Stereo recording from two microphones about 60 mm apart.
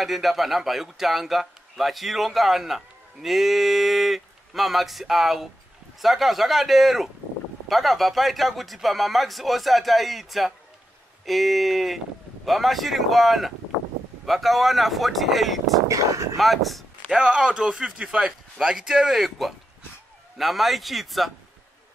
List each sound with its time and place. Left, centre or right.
0.0 s a man's voice: centre
15.9 s speech: right
16.3 s a man's voice: centre
17.1 s a man's voice: centre